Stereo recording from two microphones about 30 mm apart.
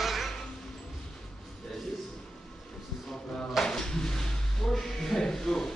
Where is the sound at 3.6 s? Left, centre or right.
Centre.